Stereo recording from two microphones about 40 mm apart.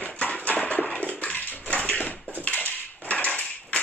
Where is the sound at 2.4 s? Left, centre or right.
Left.